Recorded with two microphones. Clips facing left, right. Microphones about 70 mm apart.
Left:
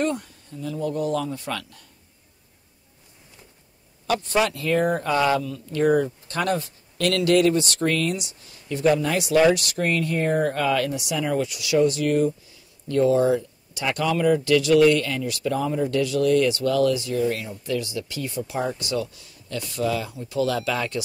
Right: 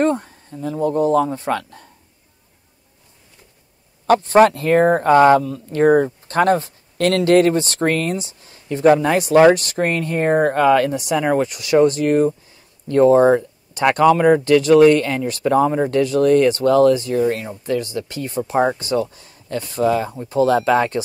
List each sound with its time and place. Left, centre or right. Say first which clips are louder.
0.0 s speech: right 7 dB; right
4.1 s speech: right 10 dB; right